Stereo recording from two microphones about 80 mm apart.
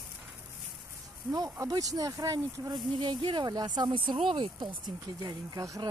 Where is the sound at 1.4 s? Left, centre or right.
Right.